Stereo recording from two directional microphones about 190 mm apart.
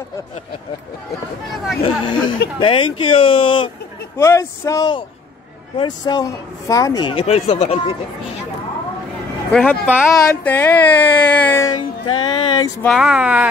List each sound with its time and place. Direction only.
1.8 s speech: 30° left (ahead or behind)
4.2 s speech: 15° left (ahead or behind); by 7.9 s 30° left (ahead or behind)
9.5 s speech: 5° left (ahead or behind); by 12.7 s 20° left (ahead or behind)
12.8 s speech: centre (ahead or behind)